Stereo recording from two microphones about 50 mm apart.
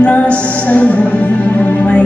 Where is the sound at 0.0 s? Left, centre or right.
Left.